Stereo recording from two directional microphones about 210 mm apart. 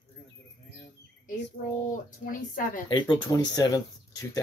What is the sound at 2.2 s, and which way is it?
Speech, 40° left (ahead or behind).